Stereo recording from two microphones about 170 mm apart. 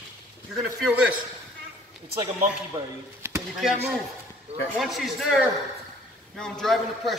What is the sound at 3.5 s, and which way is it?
A man's voice, centre (ahead or behind).